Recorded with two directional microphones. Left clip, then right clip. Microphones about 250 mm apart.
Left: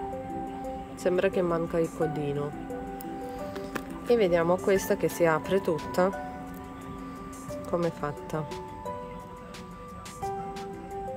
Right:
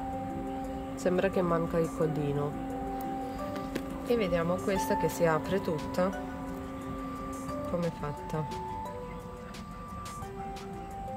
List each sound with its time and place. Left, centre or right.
1.0 s speech: centre
3.7 s music: centre
4.6 s speech: centre
7.7 s speech: centre